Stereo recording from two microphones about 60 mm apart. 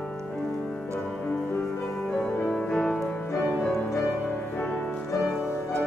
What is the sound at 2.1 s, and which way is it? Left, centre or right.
Music, centre.